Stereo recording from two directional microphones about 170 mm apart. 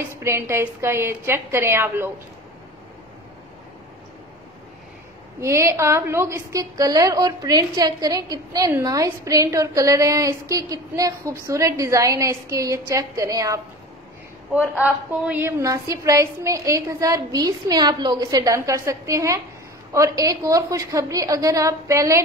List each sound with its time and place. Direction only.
0.1 s a woman's voice: 15° right (ahead or behind)
5.4 s a woman's voice: 15° right (ahead or behind)
14.5 s a woman's voice: 10° right (ahead or behind)